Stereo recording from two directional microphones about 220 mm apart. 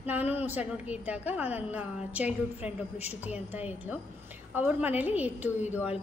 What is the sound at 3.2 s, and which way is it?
A woman's voice, 5° right (ahead or behind).